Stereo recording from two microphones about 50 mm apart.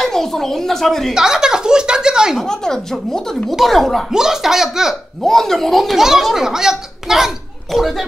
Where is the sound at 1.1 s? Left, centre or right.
Centre.